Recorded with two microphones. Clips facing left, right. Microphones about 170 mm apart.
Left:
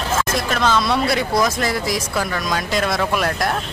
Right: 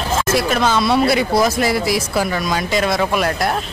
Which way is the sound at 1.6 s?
10° right (ahead or behind).